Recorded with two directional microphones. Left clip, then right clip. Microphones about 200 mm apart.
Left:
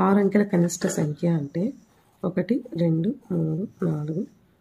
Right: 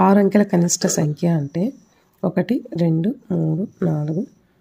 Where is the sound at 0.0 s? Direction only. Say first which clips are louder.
Right 6 dB; 40° right (ahead or behind).